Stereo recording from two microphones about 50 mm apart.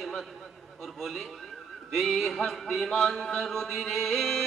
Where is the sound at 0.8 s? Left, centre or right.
Centre.